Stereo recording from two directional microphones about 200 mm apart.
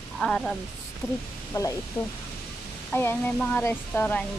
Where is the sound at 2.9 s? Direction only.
10° left (ahead or behind).